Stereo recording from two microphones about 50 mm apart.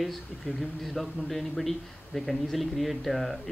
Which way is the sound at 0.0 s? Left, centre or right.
Centre.